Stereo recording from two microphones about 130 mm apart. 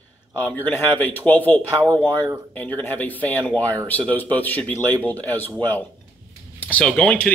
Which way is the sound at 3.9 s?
10° left (ahead or behind).